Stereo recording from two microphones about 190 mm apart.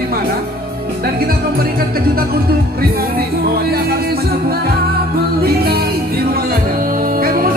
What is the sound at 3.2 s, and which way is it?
Music, 55° right (ahead or behind).